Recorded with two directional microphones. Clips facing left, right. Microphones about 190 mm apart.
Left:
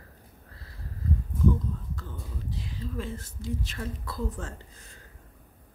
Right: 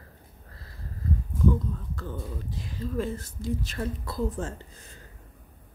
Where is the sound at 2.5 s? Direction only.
45° right (ahead or behind); by 4.5 s 30° right (ahead or behind).